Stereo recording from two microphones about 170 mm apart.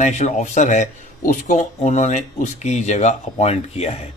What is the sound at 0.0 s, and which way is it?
A man's voice, 45° left (ahead or behind).